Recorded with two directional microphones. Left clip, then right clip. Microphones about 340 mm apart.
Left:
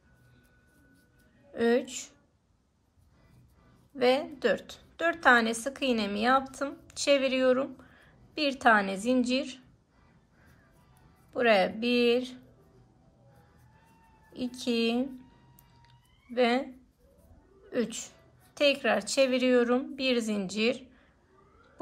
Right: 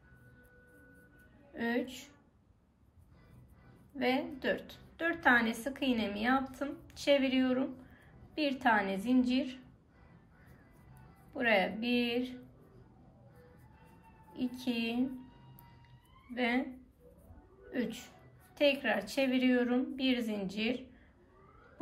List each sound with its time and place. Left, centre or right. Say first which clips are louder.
1.6 s a woman's voice: left 9 dB; centre
3.9 s a woman's voice: left 7 dB; centre
11.3 s a woman's voice: left 6 dB; centre
14.3 s a woman's voice: left 6 dB; centre
16.3 s a woman's voice: left 7 dB; centre
17.6 s a woman's voice: left 6 dB; centre